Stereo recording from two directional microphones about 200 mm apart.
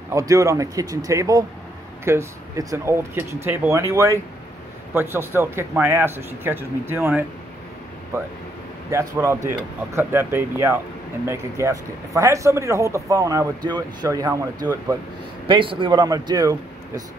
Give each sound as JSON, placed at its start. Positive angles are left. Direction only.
{"t": 0.1, "sound": "speech", "side_deg": -15}